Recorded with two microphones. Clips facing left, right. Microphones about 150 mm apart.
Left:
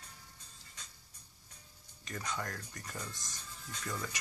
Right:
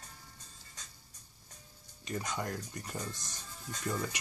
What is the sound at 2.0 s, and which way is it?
Speech, 20° right (ahead or behind).